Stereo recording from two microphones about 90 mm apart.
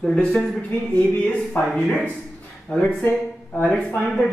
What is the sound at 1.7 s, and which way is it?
Speech, 5° left (ahead or behind).